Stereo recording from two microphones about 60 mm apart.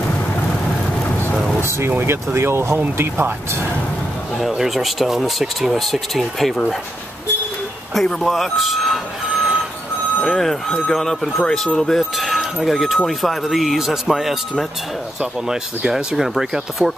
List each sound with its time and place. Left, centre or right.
1.6 s speech: right
4.4 s speech: centre
7.9 s speech: centre